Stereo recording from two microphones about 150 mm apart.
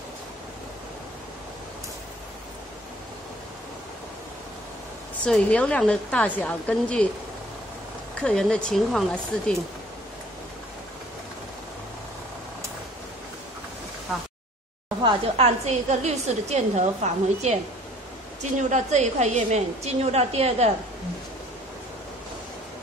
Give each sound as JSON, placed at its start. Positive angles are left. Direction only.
{"t": 5.2, "sound": "a woman's voice", "side_deg": 5}
{"t": 8.2, "sound": "speech", "side_deg": 5}
{"t": 15.3, "sound": "a woman's voice", "side_deg": -45}